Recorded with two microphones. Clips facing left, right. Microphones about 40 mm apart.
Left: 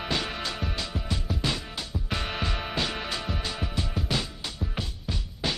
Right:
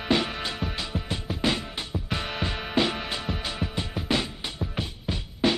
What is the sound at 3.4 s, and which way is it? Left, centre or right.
Music, right.